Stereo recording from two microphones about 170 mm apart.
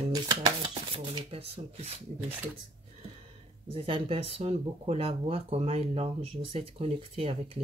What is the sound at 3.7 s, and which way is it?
Speech, 35° right (ahead or behind).